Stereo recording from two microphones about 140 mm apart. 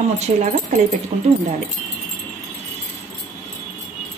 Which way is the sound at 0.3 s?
65° right (ahead or behind).